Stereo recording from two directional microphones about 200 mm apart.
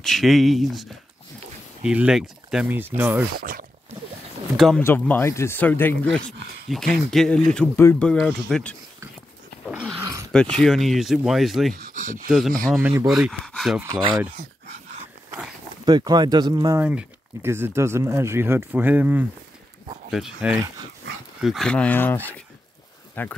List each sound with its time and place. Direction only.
0.0 s speech: centre (ahead or behind)
3.3 s speech: 45° right (ahead or behind)
4.6 s speech: 5° left (ahead or behind)
9.7 s dog: 5° right (ahead or behind)
10.6 s speech: centre (ahead or behind)
11.7 s speech: 40° right (ahead or behind)
12.3 s speech: centre (ahead or behind)
15.8 s speech: 20° right (ahead or behind); by 23.3 s 10° left (ahead or behind)